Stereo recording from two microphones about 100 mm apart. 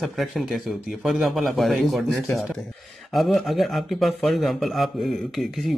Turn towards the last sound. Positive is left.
turn(degrees=0)  # may be behind; listen again after turning